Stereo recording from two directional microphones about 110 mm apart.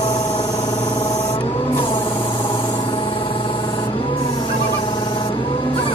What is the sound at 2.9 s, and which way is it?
Rub, 55° left (ahead or behind).